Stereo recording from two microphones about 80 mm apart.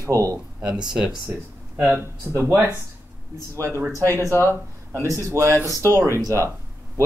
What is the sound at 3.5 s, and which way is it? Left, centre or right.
Speech, right.